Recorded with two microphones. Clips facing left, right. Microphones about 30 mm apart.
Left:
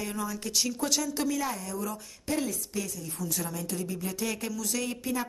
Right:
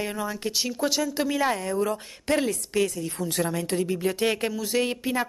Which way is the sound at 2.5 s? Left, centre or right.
Right.